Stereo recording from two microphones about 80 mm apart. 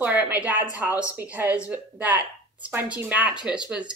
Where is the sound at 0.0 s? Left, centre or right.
Centre.